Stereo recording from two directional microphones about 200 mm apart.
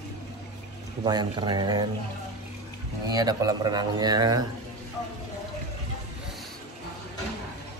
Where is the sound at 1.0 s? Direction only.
20° right (ahead or behind).